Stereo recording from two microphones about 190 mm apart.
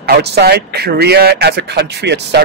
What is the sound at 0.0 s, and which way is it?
Speech, 60° right (ahead or behind).